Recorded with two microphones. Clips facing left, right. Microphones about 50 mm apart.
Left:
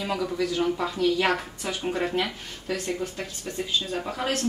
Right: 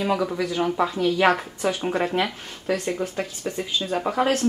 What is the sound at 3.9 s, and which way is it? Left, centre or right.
Speech, right.